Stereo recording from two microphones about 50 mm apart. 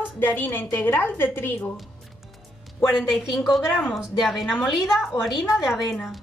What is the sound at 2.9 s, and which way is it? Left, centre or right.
A woman's voice, centre.